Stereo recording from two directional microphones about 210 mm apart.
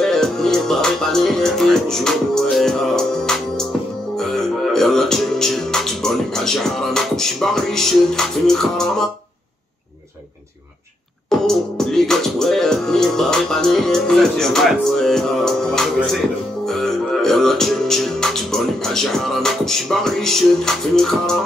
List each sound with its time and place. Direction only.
0.0 s music: centre (ahead or behind)
11.2 s music: centre (ahead or behind)